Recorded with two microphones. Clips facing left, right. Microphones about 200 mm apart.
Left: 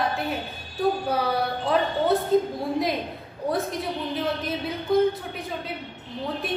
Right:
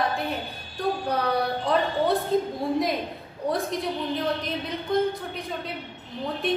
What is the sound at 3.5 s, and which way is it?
A woman's voice, centre (ahead or behind).